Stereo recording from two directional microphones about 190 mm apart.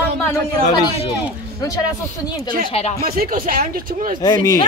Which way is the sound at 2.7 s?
35° left (ahead or behind).